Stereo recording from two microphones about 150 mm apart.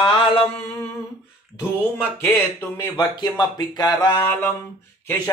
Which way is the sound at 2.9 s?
30° left (ahead or behind).